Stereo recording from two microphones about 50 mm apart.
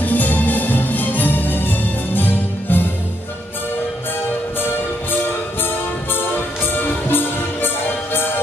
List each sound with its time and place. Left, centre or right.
0.0 s music: left
4.6 s music: left